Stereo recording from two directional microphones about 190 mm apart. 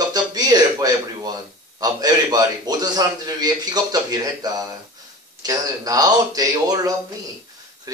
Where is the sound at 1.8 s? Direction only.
20° right (ahead or behind).